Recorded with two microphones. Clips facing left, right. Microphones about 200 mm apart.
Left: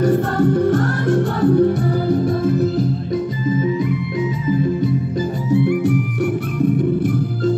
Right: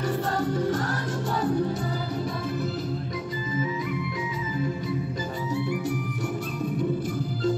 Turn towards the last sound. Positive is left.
turn(degrees=60)  # may be behind; listen again after turning